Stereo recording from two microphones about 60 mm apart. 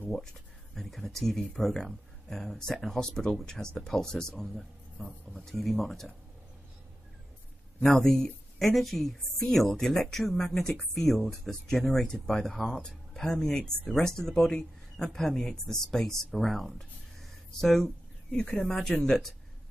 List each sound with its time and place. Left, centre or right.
0.1 s a woman's voice: centre
7.8 s a woman's voice: centre
18.4 s speech: centre